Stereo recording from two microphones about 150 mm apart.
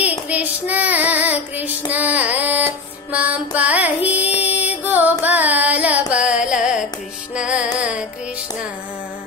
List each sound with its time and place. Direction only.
0.3 s child singing: 10° right (ahead or behind)
4.1 s music: 10° right (ahead or behind)
5.2 s carnatic music: 10° right (ahead or behind)
7.3 s music: 5° right (ahead or behind)